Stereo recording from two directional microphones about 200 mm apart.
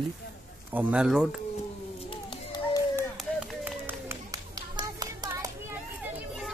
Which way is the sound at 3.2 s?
5° right (ahead or behind).